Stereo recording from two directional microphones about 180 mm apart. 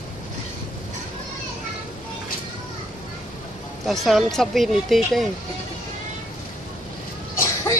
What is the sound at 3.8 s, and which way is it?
Speech, centre (ahead or behind).